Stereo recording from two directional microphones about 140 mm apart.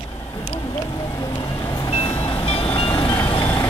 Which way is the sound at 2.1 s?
15° left (ahead or behind).